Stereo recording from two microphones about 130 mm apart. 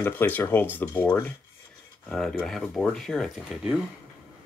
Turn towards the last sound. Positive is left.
turn(degrees=5)  # may be behind; listen again after turning